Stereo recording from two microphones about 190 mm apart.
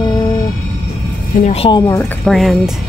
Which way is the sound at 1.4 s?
30° left (ahead or behind).